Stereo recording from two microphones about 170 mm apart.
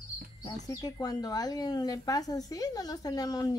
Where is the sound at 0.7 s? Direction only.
20° left (ahead or behind).